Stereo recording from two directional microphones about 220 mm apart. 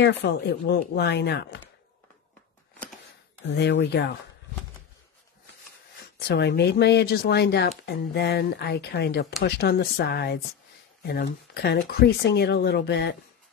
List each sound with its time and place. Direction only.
0.0 s speech: 50° left (ahead or behind)
3.4 s speech: 50° left (ahead or behind)
6.2 s speech: 50° left (ahead or behind)